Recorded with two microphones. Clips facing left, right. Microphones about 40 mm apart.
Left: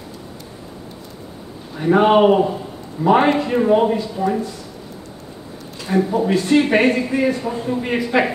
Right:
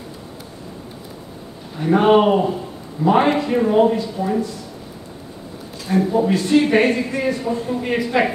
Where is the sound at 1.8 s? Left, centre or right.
Centre.